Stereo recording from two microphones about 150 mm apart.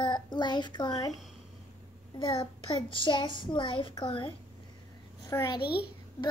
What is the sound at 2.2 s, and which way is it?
A child's voice, 30° left (ahead or behind).